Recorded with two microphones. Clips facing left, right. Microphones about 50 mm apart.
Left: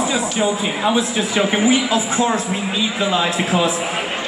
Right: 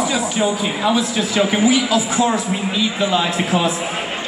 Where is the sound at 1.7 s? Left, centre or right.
Left.